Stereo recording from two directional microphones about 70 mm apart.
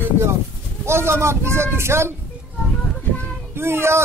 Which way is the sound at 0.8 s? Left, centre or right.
Right.